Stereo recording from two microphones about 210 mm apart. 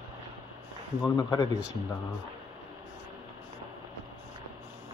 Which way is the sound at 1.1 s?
15° left (ahead or behind).